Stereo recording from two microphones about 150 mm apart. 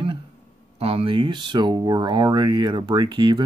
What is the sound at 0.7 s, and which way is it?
Speech, 40° right (ahead or behind).